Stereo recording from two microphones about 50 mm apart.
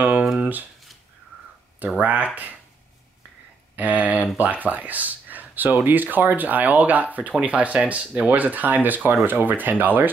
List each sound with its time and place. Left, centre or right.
0.4 s a sound: right
2.0 s speech: right
3.7 s speech: right